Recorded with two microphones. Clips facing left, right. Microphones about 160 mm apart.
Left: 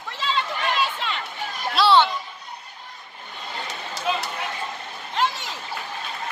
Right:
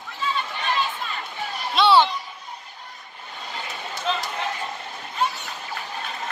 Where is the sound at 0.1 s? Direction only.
80° left.